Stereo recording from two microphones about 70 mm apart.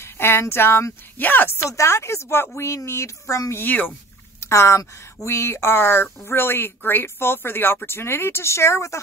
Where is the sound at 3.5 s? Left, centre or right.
Left.